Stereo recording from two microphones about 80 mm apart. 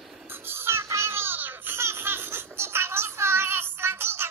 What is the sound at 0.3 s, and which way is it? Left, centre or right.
Crying, right.